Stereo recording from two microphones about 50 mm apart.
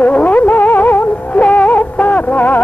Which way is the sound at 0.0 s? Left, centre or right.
Left.